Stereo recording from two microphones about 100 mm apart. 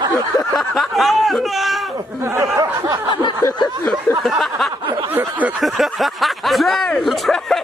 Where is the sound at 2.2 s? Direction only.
25° right (ahead or behind).